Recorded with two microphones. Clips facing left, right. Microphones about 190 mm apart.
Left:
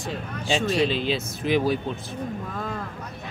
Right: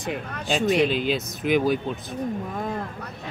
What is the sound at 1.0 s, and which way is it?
Speech, centre (ahead or behind).